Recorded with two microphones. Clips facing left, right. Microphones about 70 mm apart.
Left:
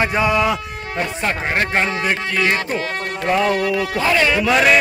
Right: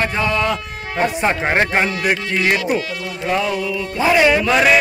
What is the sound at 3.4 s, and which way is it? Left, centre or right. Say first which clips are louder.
Speech: left 3 dB; left.